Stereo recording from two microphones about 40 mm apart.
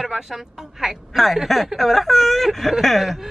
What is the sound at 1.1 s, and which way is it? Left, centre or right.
A man's voice, centre.